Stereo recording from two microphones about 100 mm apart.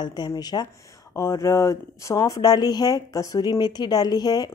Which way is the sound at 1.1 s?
30° left (ahead or behind).